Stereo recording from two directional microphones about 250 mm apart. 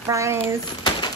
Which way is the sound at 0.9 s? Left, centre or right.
Centre.